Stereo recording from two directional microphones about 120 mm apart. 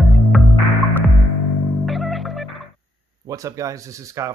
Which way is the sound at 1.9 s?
Centre (ahead or behind).